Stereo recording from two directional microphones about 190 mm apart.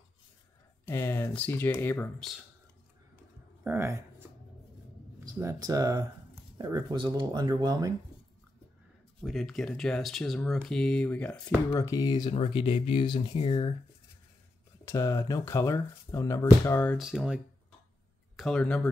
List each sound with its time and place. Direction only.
0.8 s speech: 10° left (ahead or behind)
3.6 s speech: 15° right (ahead or behind)
5.2 s speech: 20° right (ahead or behind)
9.2 s speech: centre (ahead or behind)
11.7 s speech: 15° left (ahead or behind)
14.9 s speech: 15° left (ahead or behind)
16.9 s speech: centre (ahead or behind)